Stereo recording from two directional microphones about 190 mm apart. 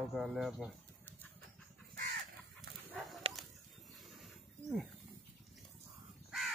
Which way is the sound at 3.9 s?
Centre (ahead or behind).